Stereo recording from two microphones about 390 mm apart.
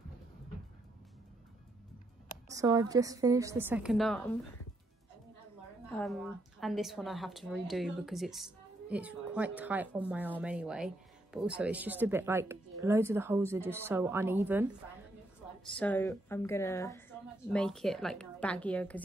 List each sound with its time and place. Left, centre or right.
2.5 s a woman's voice: centre
5.9 s speech: centre
15.7 s speech: centre